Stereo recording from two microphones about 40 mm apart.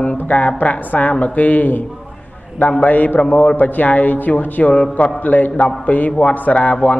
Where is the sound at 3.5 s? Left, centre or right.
Left.